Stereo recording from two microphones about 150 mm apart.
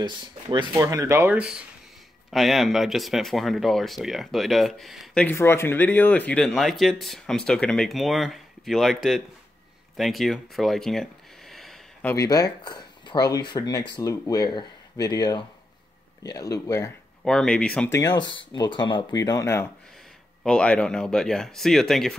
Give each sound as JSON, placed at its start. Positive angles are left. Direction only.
{"t": 0.0, "sound": "speech", "side_deg": -30}
{"t": 5.2, "sound": "speech", "side_deg": 15}
{"t": 12.0, "sound": "speech", "side_deg": 15}
{"t": 12.3, "sound": "speech", "side_deg": 25}
{"t": 17.2, "sound": "speech", "side_deg": 5}
{"t": 17.9, "sound": "speech", "side_deg": 25}
{"t": 20.4, "sound": "speech", "side_deg": 5}